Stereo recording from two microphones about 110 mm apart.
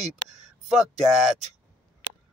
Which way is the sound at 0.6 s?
Centre (ahead or behind).